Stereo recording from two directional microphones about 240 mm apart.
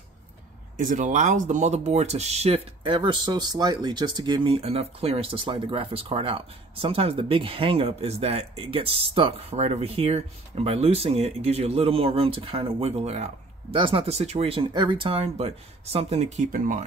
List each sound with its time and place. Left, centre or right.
0.7 s speech: right